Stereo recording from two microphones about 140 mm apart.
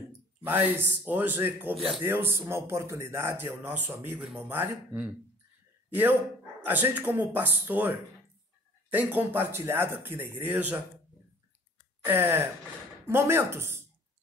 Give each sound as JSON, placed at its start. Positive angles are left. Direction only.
{"t": 0.1, "sound": "a man's voice", "side_deg": -15}
{"t": 6.6, "sound": "speech", "side_deg": -15}
{"t": 12.0, "sound": "speech", "side_deg": -15}